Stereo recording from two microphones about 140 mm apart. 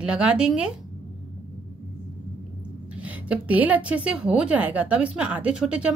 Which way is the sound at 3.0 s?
10° right (ahead or behind).